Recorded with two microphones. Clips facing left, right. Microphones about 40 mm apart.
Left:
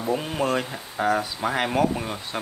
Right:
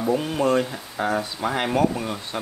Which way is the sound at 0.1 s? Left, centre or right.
Centre.